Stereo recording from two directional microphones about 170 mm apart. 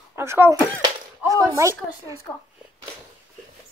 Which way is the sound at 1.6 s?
20° right (ahead or behind).